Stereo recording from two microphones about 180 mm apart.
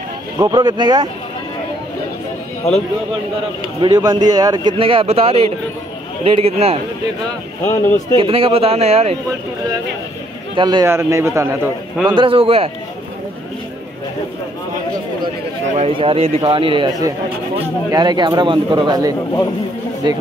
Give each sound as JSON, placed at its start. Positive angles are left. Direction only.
{"t": 0.4, "sound": "a man's voice", "side_deg": -20}
{"t": 2.6, "sound": "speech", "side_deg": 35}
{"t": 3.8, "sound": "a man's voice", "side_deg": -20}
{"t": 8.2, "sound": "speech", "side_deg": -30}
{"t": 10.5, "sound": "a man's voice", "side_deg": -25}
{"t": 12.1, "sound": "speech", "side_deg": -30}
{"t": 15.7, "sound": "a man's voice", "side_deg": -35}